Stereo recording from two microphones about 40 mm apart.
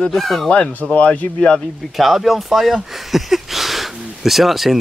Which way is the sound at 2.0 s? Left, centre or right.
Centre.